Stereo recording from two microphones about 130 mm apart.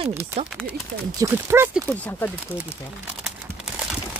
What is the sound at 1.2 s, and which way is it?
Speech, 20° right (ahead or behind).